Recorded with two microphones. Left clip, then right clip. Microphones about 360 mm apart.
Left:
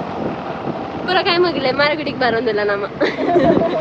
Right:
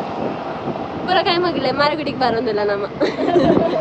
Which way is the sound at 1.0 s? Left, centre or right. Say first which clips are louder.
Left 1 dB; centre.